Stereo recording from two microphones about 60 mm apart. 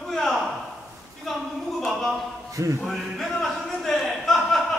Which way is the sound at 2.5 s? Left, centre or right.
Right.